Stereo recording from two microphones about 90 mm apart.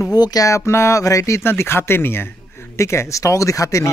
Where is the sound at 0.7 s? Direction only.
30° left (ahead or behind).